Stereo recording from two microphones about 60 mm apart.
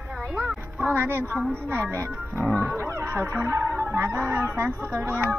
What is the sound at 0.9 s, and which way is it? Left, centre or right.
Speech, right.